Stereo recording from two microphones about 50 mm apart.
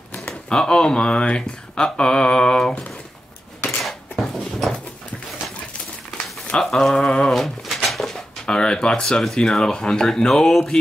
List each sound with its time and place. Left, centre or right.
0.5 s speech: centre
3.8 s a sound: centre
6.5 s speech: centre
8.5 s speech: centre